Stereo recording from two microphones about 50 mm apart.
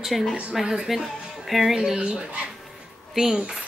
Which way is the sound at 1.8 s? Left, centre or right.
Centre.